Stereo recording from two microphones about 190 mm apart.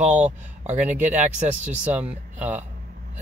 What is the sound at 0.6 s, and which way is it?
Speech, 40° right (ahead or behind).